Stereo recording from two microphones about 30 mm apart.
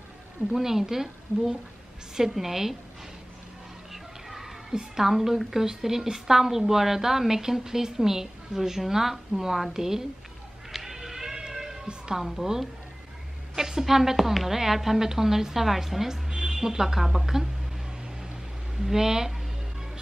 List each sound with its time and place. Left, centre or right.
0.5 s a woman's voice: centre
3.9 s children playing: centre
5.0 s a woman's voice: centre
10.7 s music: centre
12.2 s a woman's voice: centre
13.6 s a woman's voice: centre
18.8 s a woman's voice: centre